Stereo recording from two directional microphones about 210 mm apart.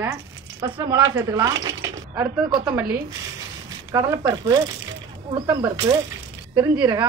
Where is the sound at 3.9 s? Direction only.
10° right (ahead or behind).